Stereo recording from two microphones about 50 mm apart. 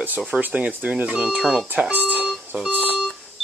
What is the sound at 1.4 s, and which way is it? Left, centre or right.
Speech, centre.